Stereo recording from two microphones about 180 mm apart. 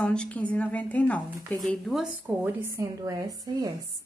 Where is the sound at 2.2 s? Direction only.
10° right (ahead or behind).